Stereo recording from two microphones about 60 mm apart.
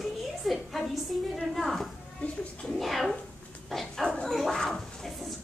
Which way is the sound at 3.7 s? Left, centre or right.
Centre.